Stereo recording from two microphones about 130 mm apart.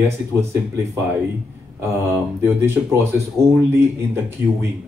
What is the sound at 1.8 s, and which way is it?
Speech, 20° right (ahead or behind).